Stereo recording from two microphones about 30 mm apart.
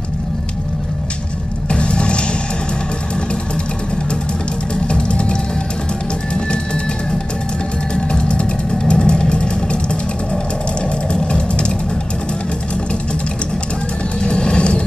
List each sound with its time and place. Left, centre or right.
1.7 s vehicle: left
4.8 s vehicle: left
7.9 s vehicle: left
14.2 s vehicle: left